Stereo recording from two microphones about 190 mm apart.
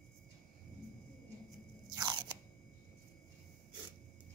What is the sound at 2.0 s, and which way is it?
Crunch, 20° right (ahead or behind).